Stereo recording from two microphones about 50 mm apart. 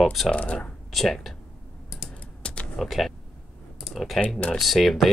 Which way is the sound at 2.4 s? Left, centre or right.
Left.